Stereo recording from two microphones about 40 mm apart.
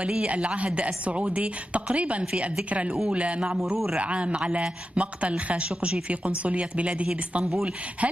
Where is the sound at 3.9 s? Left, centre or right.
Right.